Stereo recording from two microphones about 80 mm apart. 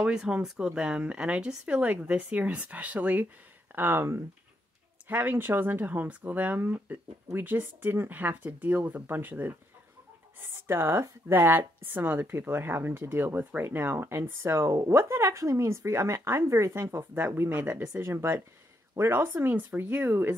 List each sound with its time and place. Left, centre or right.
0.0 s speech: centre
3.7 s speech: right
10.7 s speech: right